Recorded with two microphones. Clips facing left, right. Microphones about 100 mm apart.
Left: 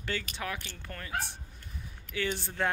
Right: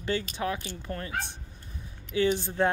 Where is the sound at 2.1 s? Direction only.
20° right (ahead or behind).